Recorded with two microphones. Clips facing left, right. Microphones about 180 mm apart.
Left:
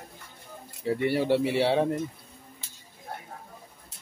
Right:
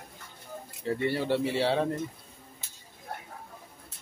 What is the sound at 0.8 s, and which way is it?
Speech, 15° left (ahead or behind).